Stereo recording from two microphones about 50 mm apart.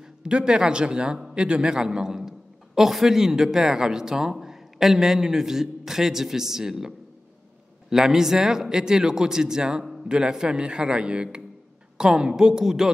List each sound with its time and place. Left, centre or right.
0.2 s a man's voice: centre
7.9 s a man's voice: centre